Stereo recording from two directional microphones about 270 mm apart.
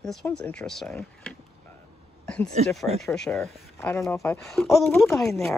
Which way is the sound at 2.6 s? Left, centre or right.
Right.